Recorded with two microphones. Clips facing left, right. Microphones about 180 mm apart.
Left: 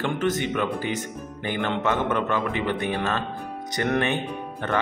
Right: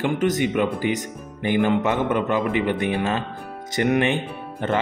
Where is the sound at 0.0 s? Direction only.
15° right (ahead or behind).